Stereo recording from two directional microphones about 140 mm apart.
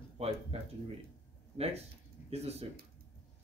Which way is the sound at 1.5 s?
45° right (ahead or behind).